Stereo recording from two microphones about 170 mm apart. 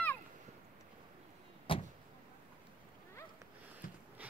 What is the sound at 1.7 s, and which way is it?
Vehicle, 30° left (ahead or behind).